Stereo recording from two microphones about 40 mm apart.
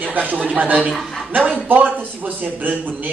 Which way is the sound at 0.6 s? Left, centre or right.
Right.